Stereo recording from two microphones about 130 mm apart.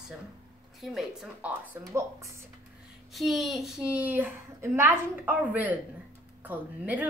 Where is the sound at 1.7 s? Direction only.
20° right (ahead or behind).